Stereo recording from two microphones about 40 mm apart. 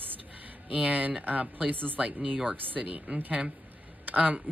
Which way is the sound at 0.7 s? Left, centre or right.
Right.